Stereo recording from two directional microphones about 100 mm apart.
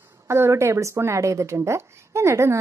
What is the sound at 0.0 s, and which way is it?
A woman's voice, 25° right (ahead or behind).